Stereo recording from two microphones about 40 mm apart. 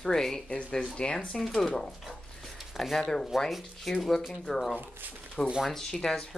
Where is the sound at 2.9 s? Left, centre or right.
Centre.